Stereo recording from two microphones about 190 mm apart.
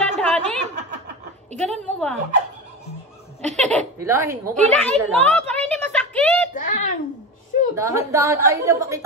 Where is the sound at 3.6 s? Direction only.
5° left (ahead or behind).